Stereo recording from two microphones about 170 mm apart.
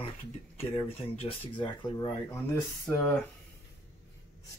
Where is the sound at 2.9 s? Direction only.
5° left (ahead or behind).